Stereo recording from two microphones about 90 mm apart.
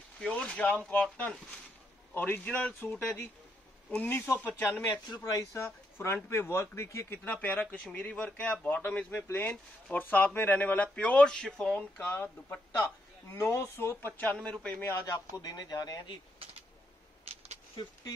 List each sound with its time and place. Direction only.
0.2 s speech: 10° left (ahead or behind)
5.2 s speech: 35° left (ahead or behind)
7.2 s speech: 20° left (ahead or behind)
14.9 s speech: 35° left (ahead or behind)
17.3 s a sound: 90° right